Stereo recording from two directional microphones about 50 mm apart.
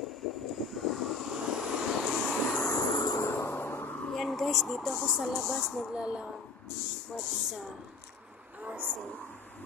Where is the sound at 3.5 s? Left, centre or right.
Left.